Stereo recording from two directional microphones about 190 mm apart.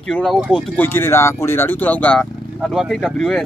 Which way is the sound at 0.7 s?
10° left (ahead or behind).